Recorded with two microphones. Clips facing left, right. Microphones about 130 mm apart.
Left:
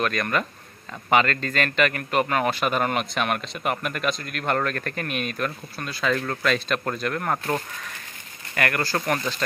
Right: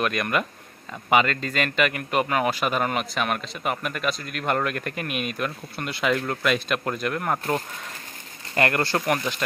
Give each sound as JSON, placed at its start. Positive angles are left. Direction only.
{"t": 0.0, "sound": "a man's voice", "side_deg": -10}
{"t": 5.8, "sound": "speech", "side_deg": -20}
{"t": 6.2, "sound": "speech", "side_deg": -10}
{"t": 8.5, "sound": "speech", "side_deg": -25}
{"t": 9.0, "sound": "speech", "side_deg": -10}